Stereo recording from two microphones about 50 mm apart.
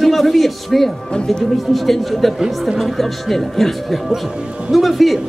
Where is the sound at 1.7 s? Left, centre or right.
Centre.